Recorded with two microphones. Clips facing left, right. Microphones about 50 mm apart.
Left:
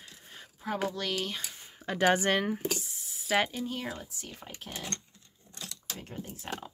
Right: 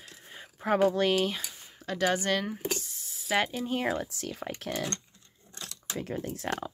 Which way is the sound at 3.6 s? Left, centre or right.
Right.